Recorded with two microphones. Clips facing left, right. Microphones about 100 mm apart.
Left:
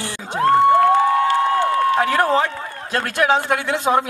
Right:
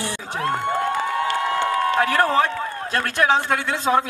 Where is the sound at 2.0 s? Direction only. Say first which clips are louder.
Left 1 dB; 20° left (ahead or behind).